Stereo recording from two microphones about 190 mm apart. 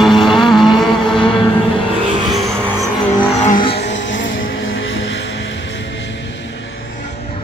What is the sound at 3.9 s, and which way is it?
Vehicle, 75° left (ahead or behind).